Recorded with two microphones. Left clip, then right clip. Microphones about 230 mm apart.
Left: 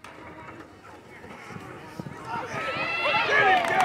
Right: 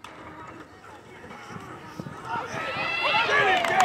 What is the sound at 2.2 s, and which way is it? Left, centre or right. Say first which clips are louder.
Run: right 1 dB; centre.